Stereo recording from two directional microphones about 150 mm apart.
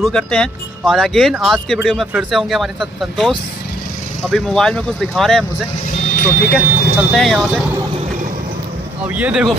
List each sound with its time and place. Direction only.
0.0 s speech: 5° left (ahead or behind)
6.0 s speech: 85° left
7.1 s speech: centre (ahead or behind)
9.1 s speech: 5° right (ahead or behind)